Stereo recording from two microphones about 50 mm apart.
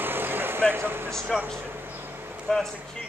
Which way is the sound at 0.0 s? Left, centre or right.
Right.